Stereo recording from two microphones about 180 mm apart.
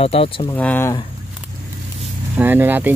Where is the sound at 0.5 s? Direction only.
10° left (ahead or behind).